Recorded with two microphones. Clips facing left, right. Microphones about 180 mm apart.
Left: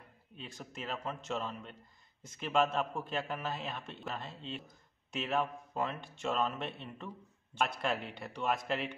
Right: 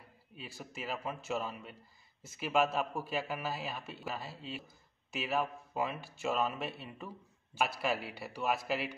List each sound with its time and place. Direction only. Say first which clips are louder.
0.0 s a man's voice: even; 5° right (ahead or behind)